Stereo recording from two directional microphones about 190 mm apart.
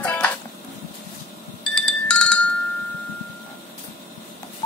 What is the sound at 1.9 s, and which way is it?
Music, 5° left (ahead or behind).